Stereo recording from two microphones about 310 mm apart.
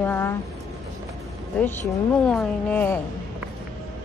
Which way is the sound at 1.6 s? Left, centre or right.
Centre.